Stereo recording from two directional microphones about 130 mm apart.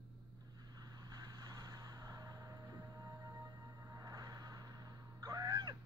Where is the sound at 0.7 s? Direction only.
30° right (ahead or behind).